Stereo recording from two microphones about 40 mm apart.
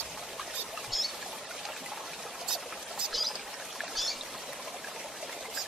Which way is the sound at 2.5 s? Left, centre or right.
Centre.